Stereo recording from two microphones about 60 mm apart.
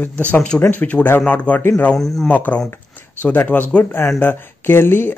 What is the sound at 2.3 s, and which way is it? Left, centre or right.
Speech, left.